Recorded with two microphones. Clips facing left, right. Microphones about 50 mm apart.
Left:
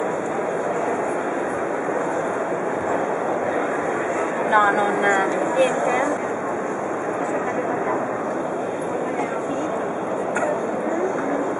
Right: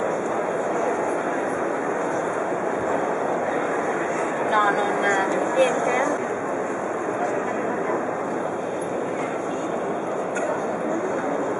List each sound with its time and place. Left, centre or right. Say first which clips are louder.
4.5 s speech: left 3 dB; centre